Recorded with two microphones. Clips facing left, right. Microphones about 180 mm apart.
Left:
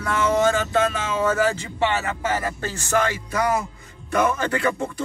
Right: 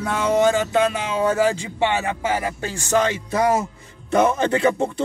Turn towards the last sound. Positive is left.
turn(degrees=-20)  # may be behind; listen again after turning